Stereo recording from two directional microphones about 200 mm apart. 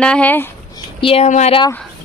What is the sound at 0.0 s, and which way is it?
Speech, 5° left (ahead or behind).